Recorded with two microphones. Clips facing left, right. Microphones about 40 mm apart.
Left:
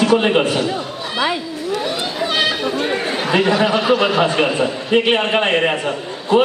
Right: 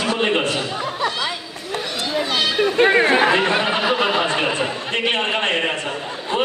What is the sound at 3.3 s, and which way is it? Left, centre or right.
Speech, right.